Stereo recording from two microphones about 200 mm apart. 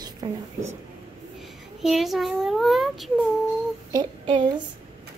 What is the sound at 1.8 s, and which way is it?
Speech, centre (ahead or behind).